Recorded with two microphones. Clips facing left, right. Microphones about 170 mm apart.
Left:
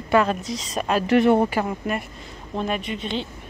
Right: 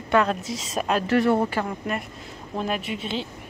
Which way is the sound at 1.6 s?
5° left (ahead or behind).